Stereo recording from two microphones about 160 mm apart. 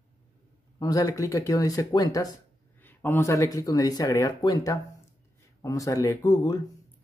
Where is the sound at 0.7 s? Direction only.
25° left (ahead or behind).